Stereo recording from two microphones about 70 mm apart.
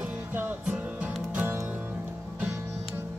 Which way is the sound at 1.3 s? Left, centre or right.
Right.